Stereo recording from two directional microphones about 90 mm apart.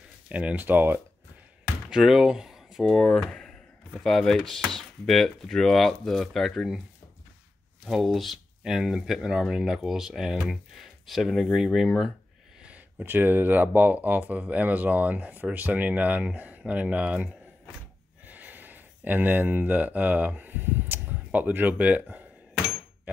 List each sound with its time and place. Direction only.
0.3 s speech: 15° right (ahead or behind)
1.9 s speech: 5° right (ahead or behind)
7.8 s speech: centre (ahead or behind)
12.5 s a sound: 15° right (ahead or behind)
13.0 s speech: 25° right (ahead or behind)